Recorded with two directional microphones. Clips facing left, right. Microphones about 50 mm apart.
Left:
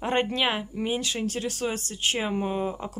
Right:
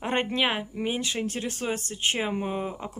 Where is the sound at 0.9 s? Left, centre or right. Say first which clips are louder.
Left 1 dB; right.